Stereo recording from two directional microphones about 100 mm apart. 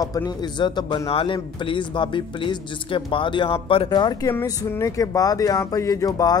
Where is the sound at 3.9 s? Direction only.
45° left (ahead or behind).